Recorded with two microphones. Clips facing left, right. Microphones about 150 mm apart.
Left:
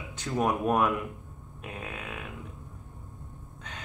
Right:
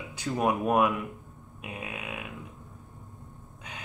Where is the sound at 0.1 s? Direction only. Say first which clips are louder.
Right 1 dB; 10° right (ahead or behind).